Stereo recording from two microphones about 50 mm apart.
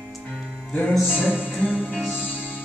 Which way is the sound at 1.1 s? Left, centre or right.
Centre.